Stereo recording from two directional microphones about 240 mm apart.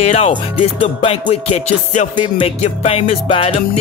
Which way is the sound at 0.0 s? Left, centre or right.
Left.